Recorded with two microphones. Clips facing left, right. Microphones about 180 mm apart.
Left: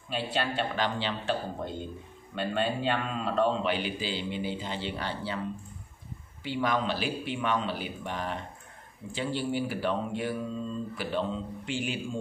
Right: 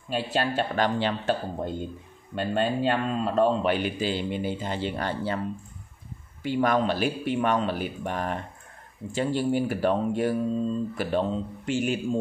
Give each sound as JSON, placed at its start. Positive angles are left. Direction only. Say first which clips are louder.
{"t": 0.1, "sound": "a man's voice", "louder": "right 4 dB", "side_deg": -45}